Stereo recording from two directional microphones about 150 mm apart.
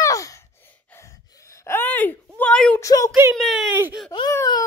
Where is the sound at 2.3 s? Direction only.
5° left (ahead or behind).